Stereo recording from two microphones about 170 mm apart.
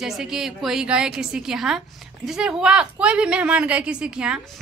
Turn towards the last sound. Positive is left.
turn(degrees=-5)  # may be behind; listen again after turning